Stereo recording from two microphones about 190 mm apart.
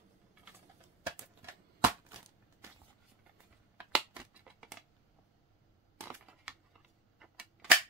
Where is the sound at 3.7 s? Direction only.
5° right (ahead or behind).